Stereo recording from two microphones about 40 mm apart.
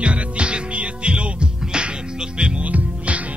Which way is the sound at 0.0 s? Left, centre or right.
Right.